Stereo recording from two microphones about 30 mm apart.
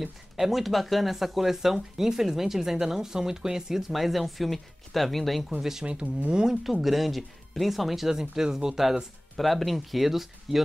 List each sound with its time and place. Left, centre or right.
0.0 s speech: centre
3.9 s speech: centre
5.6 s speech: centre
6.6 s speech: centre
8.1 s speech: centre
9.4 s speech: centre